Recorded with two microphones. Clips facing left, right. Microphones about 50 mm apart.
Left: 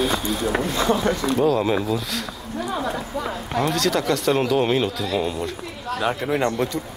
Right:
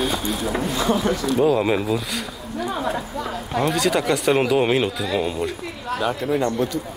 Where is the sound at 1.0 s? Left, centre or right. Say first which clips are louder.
Even; left.